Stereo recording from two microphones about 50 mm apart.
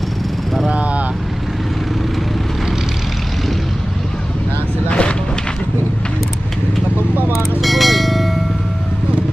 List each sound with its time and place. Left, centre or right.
0.7 s vehicle: right
4.8 s vehicle: left
7.3 s music: centre